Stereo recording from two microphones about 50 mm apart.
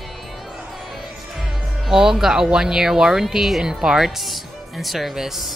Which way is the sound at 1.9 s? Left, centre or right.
Centre.